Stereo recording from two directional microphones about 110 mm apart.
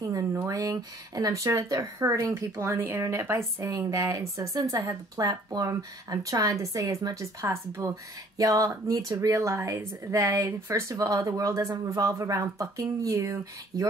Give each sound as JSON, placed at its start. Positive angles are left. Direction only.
{"t": 0.0, "sound": "speech", "side_deg": -30}